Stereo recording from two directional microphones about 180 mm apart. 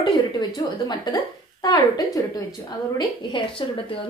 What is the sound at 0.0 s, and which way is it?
A woman's voice, 20° left (ahead or behind).